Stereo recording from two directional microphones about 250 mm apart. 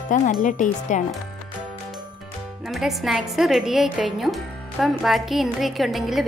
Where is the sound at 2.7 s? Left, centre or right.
Centre.